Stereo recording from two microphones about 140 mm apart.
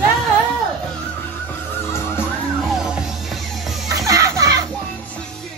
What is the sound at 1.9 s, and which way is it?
Music, 15° left (ahead or behind).